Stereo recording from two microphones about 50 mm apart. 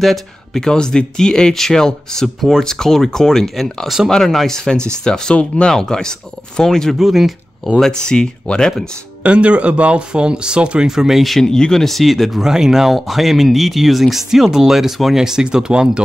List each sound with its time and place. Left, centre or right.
0.0 s speech: centre
0.6 s speech: centre
7.0 s speech: centre
8.0 s speech: centre
9.2 s speech: right
10.9 s speech: centre
11.4 s speech: centre